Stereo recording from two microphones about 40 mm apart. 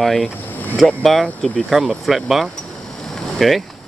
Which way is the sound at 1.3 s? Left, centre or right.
Left.